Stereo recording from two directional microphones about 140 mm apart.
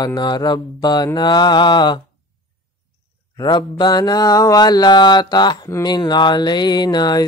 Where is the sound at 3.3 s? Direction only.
30° left (ahead or behind).